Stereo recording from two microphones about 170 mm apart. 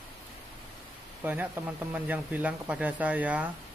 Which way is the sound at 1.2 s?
10° right (ahead or behind).